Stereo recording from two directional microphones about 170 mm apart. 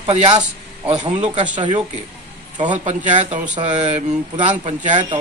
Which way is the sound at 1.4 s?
25° right (ahead or behind).